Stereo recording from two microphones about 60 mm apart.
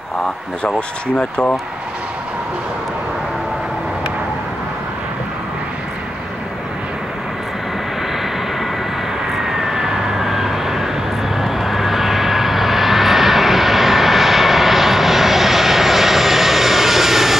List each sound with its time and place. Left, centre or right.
0.7 s speech: centre
9.3 s vehicle: centre